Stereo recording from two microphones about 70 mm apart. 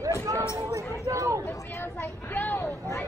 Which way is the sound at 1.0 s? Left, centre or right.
Right.